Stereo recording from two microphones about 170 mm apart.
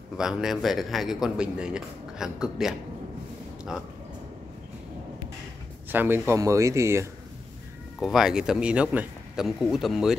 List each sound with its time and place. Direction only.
0.2 s speech: centre (ahead or behind)
5.9 s speech: 10° right (ahead or behind)
8.0 s speech: 5° right (ahead or behind)